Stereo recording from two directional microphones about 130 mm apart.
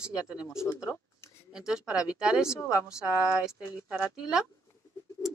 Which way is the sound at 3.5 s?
5° right (ahead or behind).